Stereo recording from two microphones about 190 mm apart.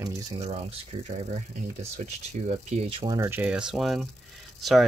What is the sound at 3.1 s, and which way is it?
Speech, 15° right (ahead or behind).